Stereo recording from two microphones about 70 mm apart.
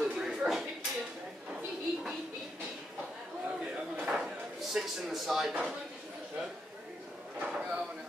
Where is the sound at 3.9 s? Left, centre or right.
Centre.